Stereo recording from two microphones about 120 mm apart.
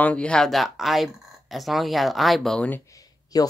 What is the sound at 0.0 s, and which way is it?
Speech, 10° left (ahead or behind).